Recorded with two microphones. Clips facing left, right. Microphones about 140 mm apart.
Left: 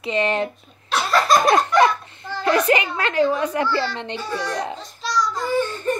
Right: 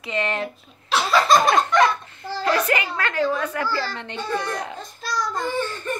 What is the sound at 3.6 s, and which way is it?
Speech, 40° right (ahead or behind).